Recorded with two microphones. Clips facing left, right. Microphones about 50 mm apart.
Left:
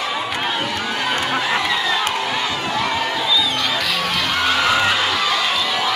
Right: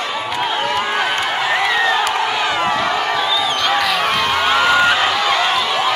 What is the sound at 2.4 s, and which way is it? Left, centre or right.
Crowd, right.